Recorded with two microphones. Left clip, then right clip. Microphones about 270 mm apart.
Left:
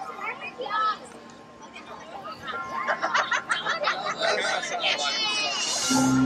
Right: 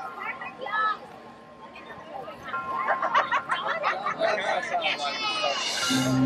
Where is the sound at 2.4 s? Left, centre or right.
Right.